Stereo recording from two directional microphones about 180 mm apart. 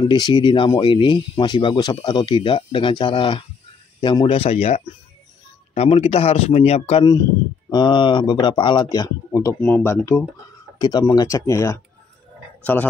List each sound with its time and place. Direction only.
0.0 s speech: 25° left (ahead or behind)